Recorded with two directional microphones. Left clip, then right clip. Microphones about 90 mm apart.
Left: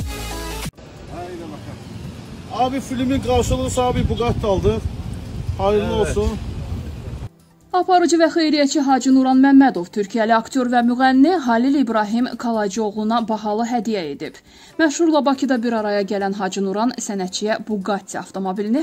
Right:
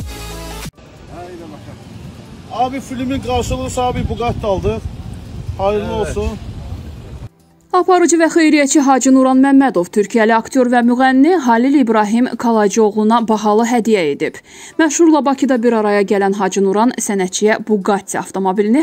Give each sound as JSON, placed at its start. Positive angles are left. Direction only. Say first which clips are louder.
{"t": 1.1, "sound": "vehicle", "louder": "even", "side_deg": 0}
{"t": 2.5, "sound": "speech", "louder": "right 2 dB", "side_deg": 0}
{"t": 7.7, "sound": "speech", "louder": "right 4 dB", "side_deg": -50}